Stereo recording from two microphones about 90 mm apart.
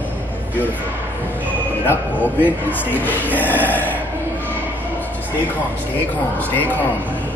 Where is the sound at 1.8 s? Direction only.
25° left (ahead or behind).